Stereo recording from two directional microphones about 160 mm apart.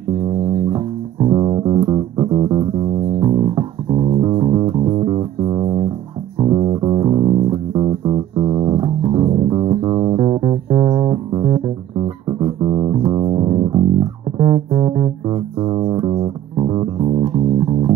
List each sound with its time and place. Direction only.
0.7 s music: 25° right (ahead or behind)